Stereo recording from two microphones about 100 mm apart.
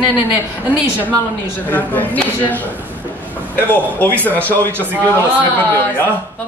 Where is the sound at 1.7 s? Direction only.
15° left (ahead or behind).